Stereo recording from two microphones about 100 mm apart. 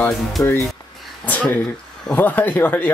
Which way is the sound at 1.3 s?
15° left (ahead or behind).